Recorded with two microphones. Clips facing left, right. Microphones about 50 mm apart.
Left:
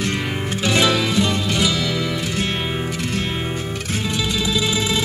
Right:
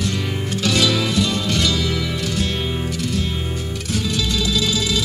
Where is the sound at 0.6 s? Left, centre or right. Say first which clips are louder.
Left 1 dB; left.